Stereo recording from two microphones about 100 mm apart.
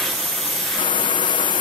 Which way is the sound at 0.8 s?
50° left (ahead or behind).